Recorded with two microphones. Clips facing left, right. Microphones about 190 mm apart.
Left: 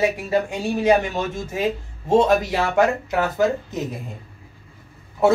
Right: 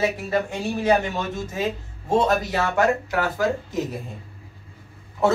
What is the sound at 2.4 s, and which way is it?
Speech, 20° left (ahead or behind).